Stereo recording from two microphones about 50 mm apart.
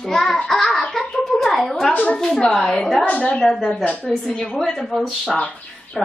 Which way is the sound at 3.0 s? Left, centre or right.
Left.